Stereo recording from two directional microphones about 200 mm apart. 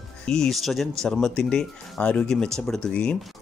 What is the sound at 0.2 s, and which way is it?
Speech, centre (ahead or behind).